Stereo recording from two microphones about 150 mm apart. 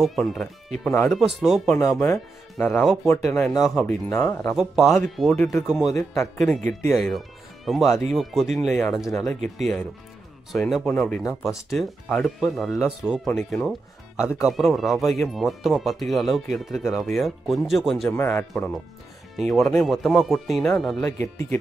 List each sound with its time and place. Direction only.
0.0 s speech: centre (ahead or behind)
3.1 s speech: 10° left (ahead or behind)
4.1 s speech: 15° left (ahead or behind)
4.4 s speech: centre (ahead or behind)